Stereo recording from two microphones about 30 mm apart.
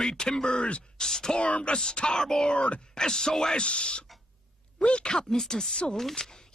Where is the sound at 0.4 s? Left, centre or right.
Left.